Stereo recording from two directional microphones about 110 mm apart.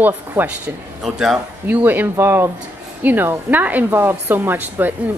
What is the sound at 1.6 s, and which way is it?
A woman's voice, 15° right (ahead or behind).